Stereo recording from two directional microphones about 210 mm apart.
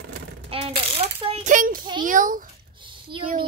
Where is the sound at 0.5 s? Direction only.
25° right (ahead or behind).